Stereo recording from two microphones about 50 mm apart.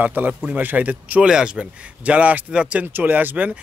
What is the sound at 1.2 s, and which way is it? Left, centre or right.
Speech, centre.